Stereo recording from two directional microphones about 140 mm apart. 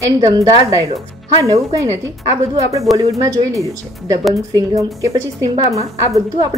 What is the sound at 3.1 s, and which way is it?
A woman's voice, 25° right (ahead or behind).